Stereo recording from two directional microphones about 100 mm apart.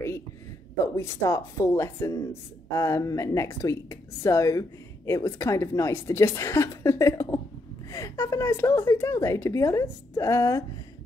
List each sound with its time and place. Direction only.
0.9 s a woman's voice: 30° left (ahead or behind)